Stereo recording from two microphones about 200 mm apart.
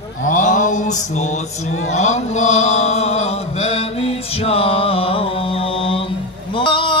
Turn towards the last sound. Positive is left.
turn(degrees=25)  # may be behind; listen again after turning